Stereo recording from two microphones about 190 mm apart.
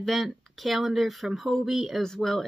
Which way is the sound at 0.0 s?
Centre (ahead or behind).